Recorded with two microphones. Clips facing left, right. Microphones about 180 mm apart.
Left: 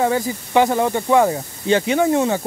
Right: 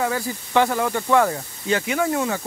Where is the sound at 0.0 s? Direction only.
20° left (ahead or behind).